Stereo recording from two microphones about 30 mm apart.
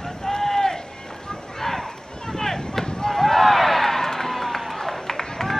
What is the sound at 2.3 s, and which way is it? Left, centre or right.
Chop, centre.